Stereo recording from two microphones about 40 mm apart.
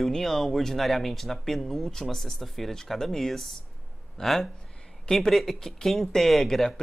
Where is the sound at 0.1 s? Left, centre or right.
Centre.